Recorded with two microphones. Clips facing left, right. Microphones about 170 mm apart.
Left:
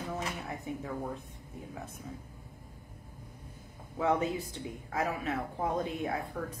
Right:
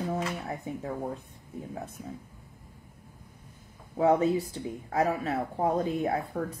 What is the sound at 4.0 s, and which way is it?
Speech, 35° right (ahead or behind).